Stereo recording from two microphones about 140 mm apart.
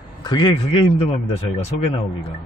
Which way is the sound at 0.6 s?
40° left (ahead or behind).